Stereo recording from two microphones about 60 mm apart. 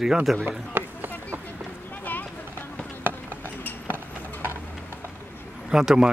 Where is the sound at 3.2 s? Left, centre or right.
Left.